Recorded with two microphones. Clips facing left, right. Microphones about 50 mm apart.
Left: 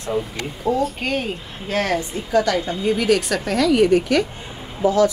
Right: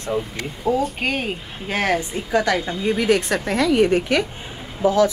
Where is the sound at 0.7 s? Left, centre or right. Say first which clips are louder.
Even; centre.